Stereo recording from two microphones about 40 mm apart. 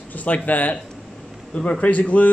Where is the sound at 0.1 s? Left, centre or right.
Left.